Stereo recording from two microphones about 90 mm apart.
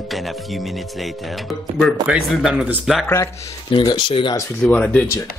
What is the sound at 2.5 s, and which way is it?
Speech, 10° right (ahead or behind).